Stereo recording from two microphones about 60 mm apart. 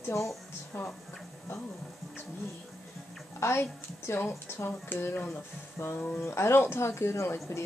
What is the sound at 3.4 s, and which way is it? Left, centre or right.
Speech, left.